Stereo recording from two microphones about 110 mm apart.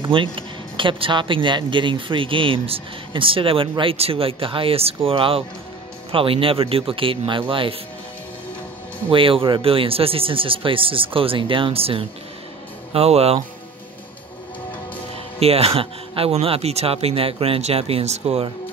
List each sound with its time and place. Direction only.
0.1 s speech: 50° right (ahead or behind)
3.9 s speech: 60° right (ahead or behind)
9.1 s speech: 55° right (ahead or behind)
15.3 s speech: 65° right (ahead or behind)